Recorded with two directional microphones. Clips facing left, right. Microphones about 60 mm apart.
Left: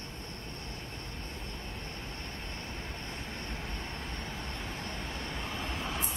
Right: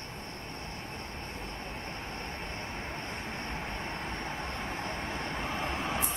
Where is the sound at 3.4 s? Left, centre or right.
Right.